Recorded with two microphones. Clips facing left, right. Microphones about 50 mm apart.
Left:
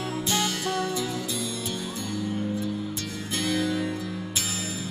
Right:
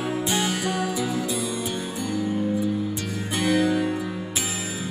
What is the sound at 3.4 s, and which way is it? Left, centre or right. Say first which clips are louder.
Music: right 5 dB; centre.